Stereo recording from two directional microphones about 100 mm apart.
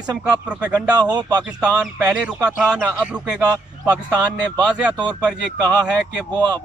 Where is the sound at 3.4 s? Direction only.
40° right (ahead or behind).